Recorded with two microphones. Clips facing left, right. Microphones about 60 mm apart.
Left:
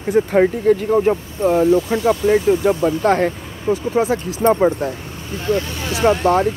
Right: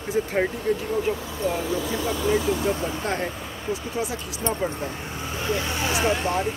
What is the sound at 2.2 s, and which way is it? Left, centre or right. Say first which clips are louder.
Speech: left 7 dB; left.